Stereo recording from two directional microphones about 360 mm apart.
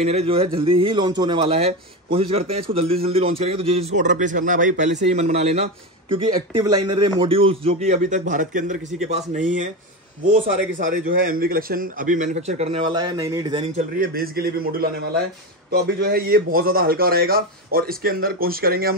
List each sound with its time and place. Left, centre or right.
0.0 s a man's voice: centre